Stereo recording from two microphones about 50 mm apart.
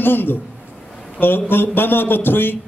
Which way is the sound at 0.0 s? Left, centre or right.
Left.